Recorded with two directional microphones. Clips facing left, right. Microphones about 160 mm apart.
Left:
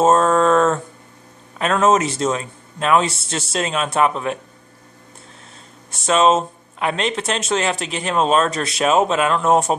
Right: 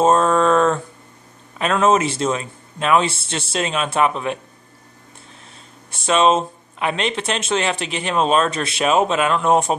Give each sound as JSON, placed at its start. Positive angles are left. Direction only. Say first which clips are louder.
{"t": 0.0, "sound": "mantra", "louder": "left 1 dB", "side_deg": 0}
{"t": 1.6, "sound": "speech", "louder": "even", "side_deg": 0}
{"t": 5.9, "sound": "speech", "louder": "left 1 dB", "side_deg": 0}
{"t": 7.8, "sound": "speech", "louder": "even", "side_deg": 40}
{"t": 8.1, "sound": "speech", "louder": "left 1 dB", "side_deg": 0}